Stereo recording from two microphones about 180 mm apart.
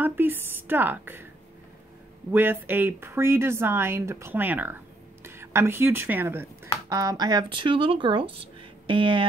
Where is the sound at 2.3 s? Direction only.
10° right (ahead or behind).